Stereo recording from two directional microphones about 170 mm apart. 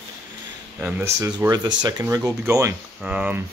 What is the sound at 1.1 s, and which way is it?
Speech, 20° right (ahead or behind).